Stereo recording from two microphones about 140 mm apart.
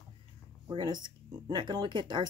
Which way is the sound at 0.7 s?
30° right (ahead or behind).